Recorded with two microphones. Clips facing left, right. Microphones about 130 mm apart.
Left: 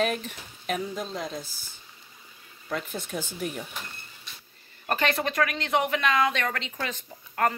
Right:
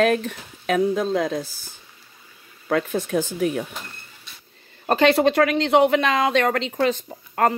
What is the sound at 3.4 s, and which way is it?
Speech, 80° right.